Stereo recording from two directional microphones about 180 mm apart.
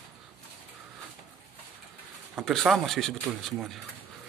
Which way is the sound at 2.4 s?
Centre (ahead or behind).